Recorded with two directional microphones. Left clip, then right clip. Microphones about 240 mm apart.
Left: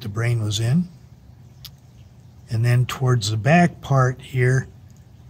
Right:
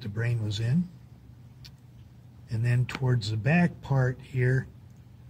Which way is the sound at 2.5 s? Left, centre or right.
Left.